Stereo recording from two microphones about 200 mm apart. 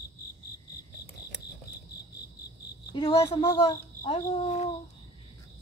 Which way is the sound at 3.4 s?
20° left (ahead or behind).